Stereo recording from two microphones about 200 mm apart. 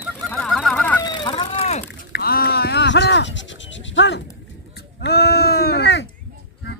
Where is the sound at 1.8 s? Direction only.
55° left (ahead or behind).